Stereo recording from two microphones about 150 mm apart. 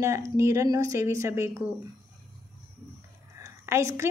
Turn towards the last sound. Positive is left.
turn(degrees=-20)  # may be behind; listen again after turning